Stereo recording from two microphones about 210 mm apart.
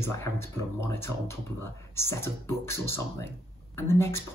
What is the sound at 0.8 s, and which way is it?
Speech, 10° left (ahead or behind).